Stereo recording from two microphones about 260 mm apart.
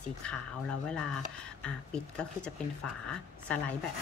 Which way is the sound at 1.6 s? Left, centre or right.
Centre.